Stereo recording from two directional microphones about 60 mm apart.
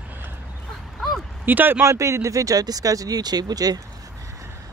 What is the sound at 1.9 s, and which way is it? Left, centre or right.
Speech, right.